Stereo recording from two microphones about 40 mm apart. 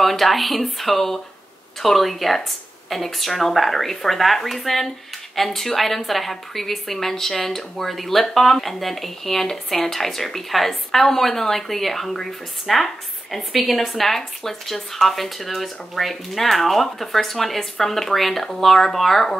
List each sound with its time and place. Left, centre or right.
0.0 s a woman's voice: centre